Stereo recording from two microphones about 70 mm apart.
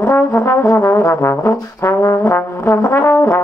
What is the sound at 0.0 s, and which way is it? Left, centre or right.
Brass instrument, left.